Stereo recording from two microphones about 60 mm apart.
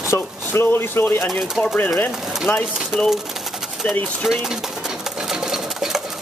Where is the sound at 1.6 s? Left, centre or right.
Left.